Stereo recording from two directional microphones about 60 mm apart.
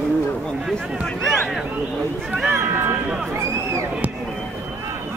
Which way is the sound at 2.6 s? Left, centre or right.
Right.